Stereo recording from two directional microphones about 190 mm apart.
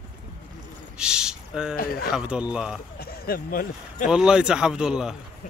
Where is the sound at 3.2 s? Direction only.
50° left (ahead or behind).